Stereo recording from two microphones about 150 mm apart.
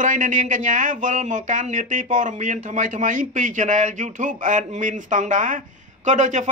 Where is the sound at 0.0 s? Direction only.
60° right (ahead or behind).